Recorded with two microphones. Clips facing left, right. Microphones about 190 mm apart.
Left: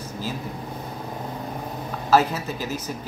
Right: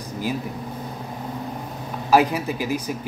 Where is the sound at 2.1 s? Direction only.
15° right (ahead or behind).